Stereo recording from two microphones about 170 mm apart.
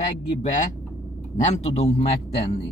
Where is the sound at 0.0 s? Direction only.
45° left (ahead or behind).